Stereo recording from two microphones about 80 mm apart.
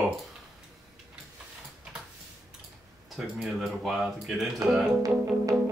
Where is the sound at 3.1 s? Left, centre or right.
Centre.